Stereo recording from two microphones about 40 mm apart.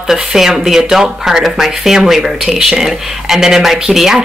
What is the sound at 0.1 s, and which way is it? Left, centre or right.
Speech, centre.